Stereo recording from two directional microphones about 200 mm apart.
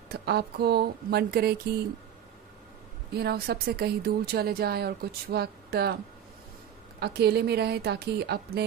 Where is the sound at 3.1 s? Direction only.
50° right (ahead or behind).